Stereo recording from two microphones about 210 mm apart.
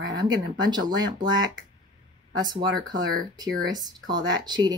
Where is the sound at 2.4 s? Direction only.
20° right (ahead or behind).